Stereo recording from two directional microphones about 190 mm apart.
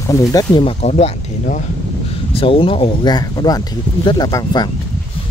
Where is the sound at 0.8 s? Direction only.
35° left (ahead or behind); by 4.6 s 20° left (ahead or behind).